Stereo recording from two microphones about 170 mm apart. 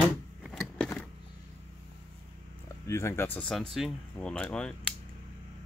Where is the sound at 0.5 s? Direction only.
5° left (ahead or behind).